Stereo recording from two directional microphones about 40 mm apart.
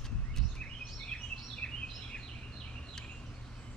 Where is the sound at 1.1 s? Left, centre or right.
Centre.